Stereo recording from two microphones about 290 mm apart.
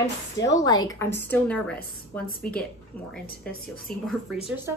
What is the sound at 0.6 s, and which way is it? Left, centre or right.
A woman's voice, centre.